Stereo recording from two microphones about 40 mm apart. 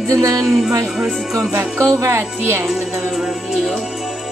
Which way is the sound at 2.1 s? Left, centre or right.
Right.